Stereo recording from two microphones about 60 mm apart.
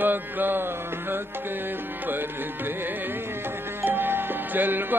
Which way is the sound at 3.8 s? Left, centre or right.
Right.